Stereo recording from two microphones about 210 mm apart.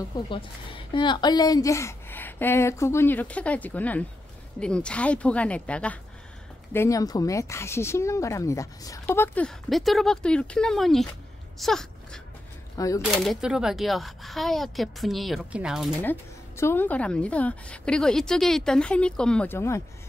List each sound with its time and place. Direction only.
0.3 s a woman's voice: 25° left (ahead or behind); by 12.2 s centre (ahead or behind)
12.7 s speech: 15° left (ahead or behind)
13.0 s a woman's voice: centre (ahead or behind)
16.0 s a woman's voice: 10° left (ahead or behind)